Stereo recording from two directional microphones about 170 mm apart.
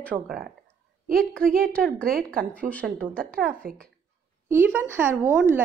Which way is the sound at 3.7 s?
55° right (ahead or behind).